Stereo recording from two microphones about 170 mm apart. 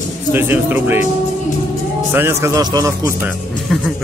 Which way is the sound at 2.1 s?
15° right (ahead or behind).